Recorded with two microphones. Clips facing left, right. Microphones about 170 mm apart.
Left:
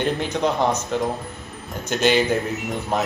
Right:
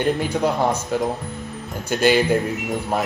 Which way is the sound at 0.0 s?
10° right (ahead or behind).